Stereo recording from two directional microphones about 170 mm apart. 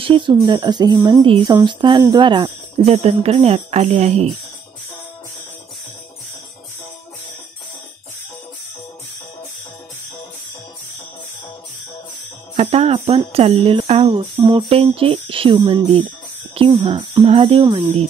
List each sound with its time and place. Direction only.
0.0 s speech: 30° right (ahead or behind)
2.8 s speech: 35° right (ahead or behind)
12.5 s speech: 35° right (ahead or behind)